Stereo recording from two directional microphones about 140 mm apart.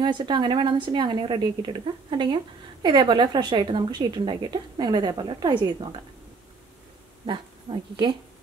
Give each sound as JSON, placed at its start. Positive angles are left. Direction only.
{"t": 0.0, "sound": "a woman's voice", "side_deg": -35}